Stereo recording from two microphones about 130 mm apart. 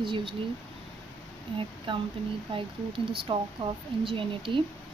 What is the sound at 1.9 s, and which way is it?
Speech, 40° right (ahead or behind).